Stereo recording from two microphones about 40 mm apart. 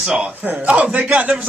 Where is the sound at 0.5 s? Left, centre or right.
Right.